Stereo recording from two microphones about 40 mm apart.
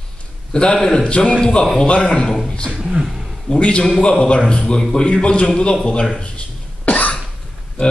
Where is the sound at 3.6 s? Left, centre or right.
Left.